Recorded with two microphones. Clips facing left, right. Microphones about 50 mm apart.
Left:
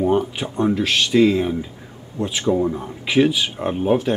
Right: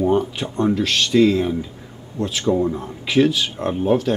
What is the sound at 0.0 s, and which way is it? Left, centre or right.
A man's voice, centre.